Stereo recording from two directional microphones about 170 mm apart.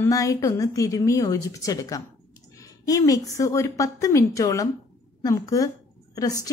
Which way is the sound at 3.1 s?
20° left (ahead or behind).